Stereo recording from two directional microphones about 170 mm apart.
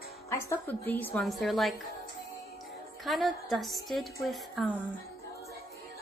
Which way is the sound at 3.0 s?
Centre (ahead or behind).